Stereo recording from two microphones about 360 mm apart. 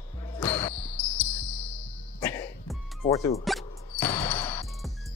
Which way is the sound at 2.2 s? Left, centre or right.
Centre.